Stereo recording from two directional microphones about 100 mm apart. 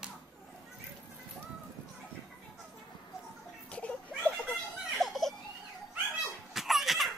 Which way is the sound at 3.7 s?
15° left (ahead or behind).